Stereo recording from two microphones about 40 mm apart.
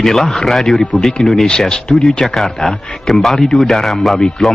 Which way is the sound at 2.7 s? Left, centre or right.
Centre.